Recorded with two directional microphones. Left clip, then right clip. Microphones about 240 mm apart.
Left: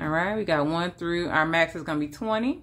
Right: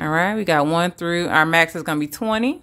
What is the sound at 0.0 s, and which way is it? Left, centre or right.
Speech, right.